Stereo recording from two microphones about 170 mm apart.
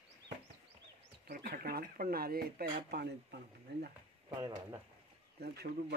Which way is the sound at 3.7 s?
85° right.